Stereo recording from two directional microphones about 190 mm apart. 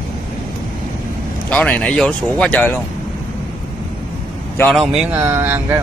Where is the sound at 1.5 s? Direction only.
5° left (ahead or behind).